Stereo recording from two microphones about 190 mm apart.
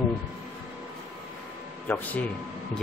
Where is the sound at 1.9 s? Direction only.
10° left (ahead or behind).